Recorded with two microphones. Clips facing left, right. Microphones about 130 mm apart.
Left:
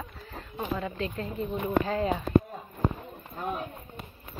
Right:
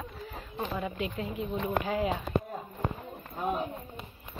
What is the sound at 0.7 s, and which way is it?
A child's voice, 15° right (ahead or behind).